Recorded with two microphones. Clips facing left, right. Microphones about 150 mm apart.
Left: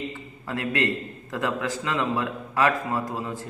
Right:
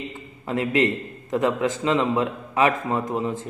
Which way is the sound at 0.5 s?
20° right (ahead or behind).